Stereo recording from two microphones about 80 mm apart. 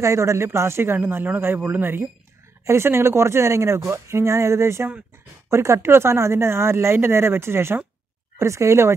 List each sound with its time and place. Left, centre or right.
0.0 s a man's voice: right